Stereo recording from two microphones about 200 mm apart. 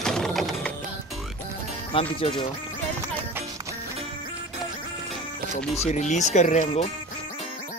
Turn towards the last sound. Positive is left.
turn(degrees=35)  # may be behind; listen again after turning